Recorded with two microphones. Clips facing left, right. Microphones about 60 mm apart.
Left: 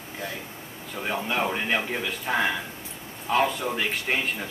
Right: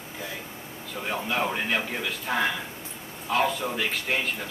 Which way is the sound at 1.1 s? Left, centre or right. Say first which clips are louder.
Left 1 dB; centre.